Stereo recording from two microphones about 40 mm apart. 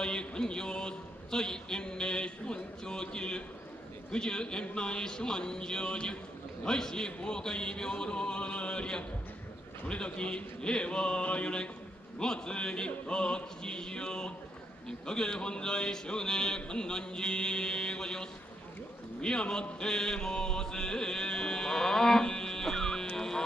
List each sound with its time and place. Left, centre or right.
0.0 s speech: left
6.6 s music: centre
7.2 s speech: left
19.8 s music: centre